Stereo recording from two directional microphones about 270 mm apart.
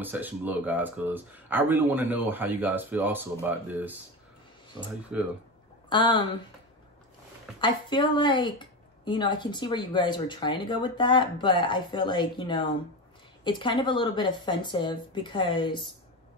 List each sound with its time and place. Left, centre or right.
0.0 s speech: centre
5.1 s speech: centre
5.9 s speech: centre
7.6 s a woman's voice: centre